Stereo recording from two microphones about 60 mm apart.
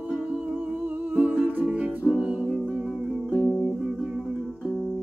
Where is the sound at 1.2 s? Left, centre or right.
Right.